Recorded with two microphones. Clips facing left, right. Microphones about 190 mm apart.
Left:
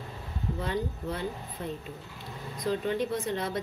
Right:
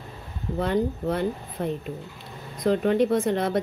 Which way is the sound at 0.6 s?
65° right (ahead or behind).